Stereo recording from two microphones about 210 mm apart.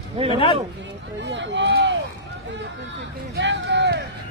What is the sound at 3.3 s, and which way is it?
Speech, 55° right (ahead or behind).